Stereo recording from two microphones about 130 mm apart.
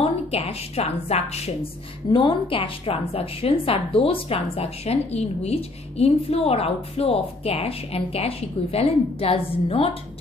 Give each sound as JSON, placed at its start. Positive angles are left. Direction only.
{"t": 0.0, "sound": "a woman's voice", "side_deg": 50}